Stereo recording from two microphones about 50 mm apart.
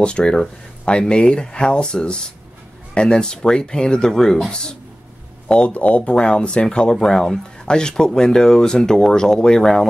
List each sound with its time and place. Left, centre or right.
0.0 s speech: centre
5.7 s speech: left; by 9.8 s centre